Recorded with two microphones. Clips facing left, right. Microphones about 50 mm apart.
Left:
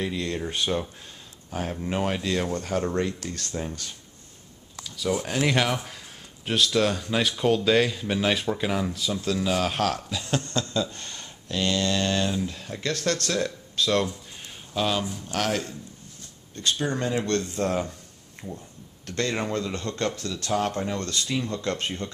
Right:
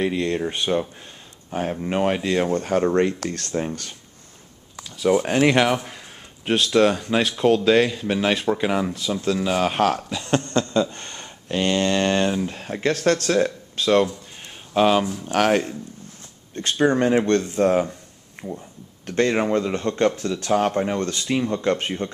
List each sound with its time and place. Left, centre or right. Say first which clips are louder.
0.0 s speech: right 6 dB; right
3.3 s speech: right 6 dB; right
4.8 s speech: right 8 dB; right
5.5 s speech: right 6 dB; centre
10.3 s a sound: right 7 dB; right
10.9 s speech: right 3 dB; centre
12.8 s speech: right 7 dB; right